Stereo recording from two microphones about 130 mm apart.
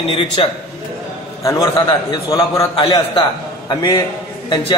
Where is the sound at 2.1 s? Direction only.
30° left (ahead or behind).